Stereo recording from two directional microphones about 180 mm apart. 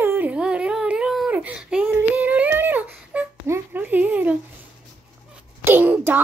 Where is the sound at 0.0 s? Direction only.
10° right (ahead or behind).